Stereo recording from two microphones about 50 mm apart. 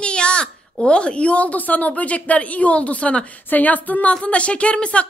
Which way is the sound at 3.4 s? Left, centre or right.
Left.